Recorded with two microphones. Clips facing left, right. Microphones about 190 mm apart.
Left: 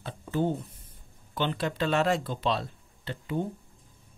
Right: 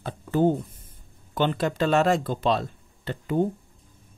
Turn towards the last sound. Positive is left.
turn(degrees=-50)  # may be behind; listen again after turning